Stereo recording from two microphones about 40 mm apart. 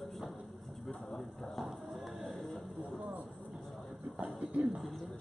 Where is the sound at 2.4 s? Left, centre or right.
Centre.